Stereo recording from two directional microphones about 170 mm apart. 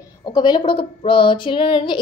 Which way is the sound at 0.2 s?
25° left (ahead or behind).